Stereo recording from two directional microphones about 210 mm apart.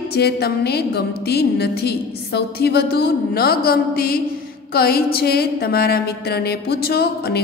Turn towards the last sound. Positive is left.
turn(degrees=50)  # may be behind; listen again after turning